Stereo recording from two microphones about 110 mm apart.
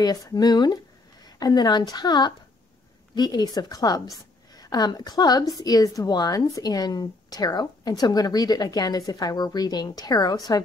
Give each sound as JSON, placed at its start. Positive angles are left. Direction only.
{"t": 0.0, "sound": "a woman's voice", "side_deg": 35}